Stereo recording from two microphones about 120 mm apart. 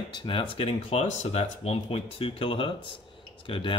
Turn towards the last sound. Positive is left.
turn(degrees=45)  # may be behind; listen again after turning